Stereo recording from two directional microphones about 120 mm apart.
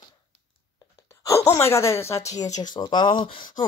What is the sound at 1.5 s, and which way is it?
Speech, 25° left (ahead or behind).